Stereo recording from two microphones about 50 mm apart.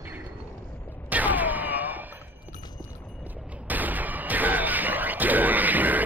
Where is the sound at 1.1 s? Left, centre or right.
Right.